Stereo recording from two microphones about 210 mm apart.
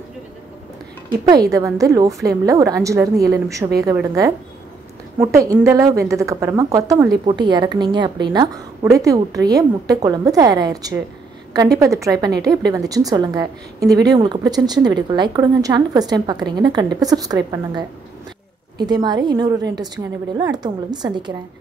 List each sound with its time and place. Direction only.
1.3 s a woman's voice: 15° right (ahead or behind)